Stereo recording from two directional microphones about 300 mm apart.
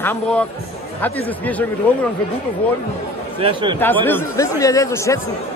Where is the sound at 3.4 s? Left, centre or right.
Centre.